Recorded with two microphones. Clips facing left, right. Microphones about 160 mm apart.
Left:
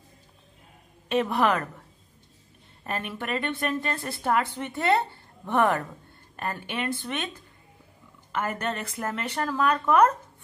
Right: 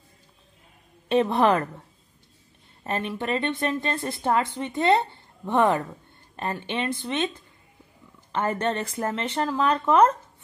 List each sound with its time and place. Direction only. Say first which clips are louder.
1.0 s a woman's voice: right 3 dB; 30° right (ahead or behind)
2.8 s a woman's voice: right 4 dB; 25° right (ahead or behind)
8.3 s a woman's voice: right 4 dB; 30° right (ahead or behind)